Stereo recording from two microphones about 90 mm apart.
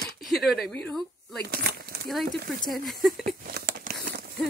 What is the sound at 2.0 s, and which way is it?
Speech, centre (ahead or behind).